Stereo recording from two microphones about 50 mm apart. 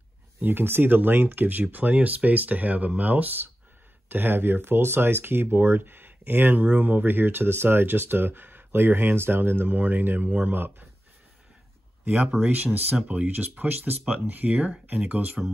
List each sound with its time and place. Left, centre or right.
0.4 s speech: right
6.6 s speech: right
9.7 s speech: right
12.0 s speech: right